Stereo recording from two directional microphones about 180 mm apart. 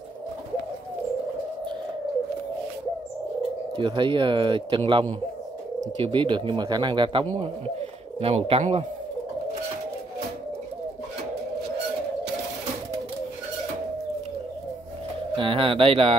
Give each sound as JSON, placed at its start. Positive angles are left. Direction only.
{"t": 3.7, "sound": "speech", "side_deg": -25}
{"t": 15.3, "sound": "speech", "side_deg": -30}